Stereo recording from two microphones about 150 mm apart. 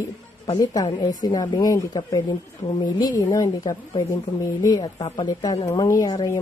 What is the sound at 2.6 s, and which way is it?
Speech, 45° left (ahead or behind).